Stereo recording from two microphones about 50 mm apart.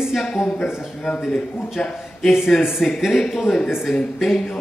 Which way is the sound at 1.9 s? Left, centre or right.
Centre.